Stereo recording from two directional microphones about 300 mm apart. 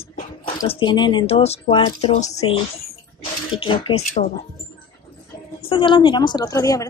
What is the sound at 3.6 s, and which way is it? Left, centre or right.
Speech, centre.